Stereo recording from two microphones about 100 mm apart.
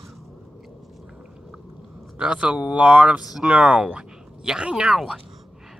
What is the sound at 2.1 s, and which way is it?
Speech, 10° right (ahead or behind).